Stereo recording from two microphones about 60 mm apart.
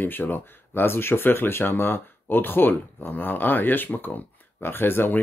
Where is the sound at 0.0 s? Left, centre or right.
Left.